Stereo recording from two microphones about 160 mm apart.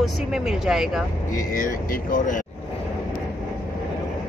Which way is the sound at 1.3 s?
60° left (ahead or behind).